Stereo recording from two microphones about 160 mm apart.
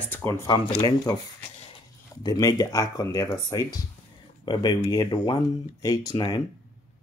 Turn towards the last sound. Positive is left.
turn(degrees=25)  # may be behind; listen again after turning